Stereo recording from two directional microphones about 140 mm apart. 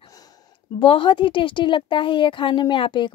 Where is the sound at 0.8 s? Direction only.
35° left (ahead or behind).